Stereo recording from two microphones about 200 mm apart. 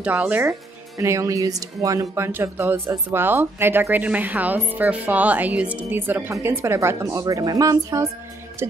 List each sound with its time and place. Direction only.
0.0 s speech: 5° right (ahead or behind)